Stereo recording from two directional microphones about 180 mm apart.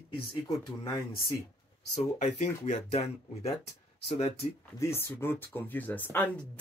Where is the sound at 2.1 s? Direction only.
40° left (ahead or behind).